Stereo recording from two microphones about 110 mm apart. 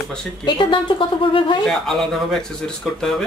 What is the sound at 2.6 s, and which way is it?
Speech, 5° left (ahead or behind).